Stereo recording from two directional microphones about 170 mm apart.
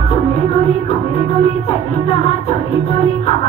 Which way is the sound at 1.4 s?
35° left (ahead or behind).